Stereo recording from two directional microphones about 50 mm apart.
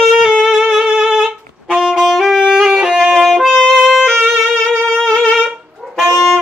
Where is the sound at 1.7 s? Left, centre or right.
Centre.